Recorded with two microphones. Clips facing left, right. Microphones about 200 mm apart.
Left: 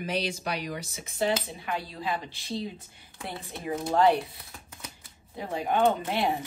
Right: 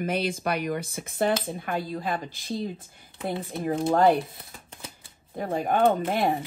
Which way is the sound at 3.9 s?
50° right (ahead or behind).